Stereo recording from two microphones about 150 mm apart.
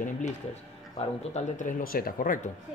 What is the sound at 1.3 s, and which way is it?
Speech, 65° left (ahead or behind).